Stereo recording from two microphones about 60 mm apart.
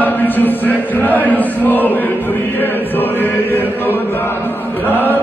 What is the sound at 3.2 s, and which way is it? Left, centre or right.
Chant, left.